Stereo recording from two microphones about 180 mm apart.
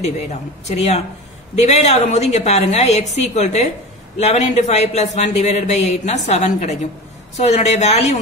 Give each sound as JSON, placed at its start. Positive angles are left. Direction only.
{"t": 0.0, "sound": "speech", "side_deg": 40}